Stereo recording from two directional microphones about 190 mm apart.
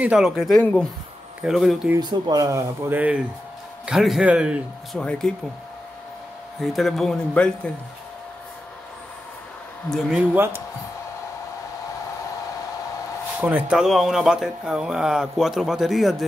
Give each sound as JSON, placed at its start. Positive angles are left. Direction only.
{"t": 0.0, "sound": "speech", "side_deg": -5}
{"t": 2.0, "sound": "speech", "side_deg": -25}
{"t": 6.6, "sound": "speech", "side_deg": 0}
{"t": 9.8, "sound": "speech", "side_deg": 0}
{"t": 13.4, "sound": "speech", "side_deg": -10}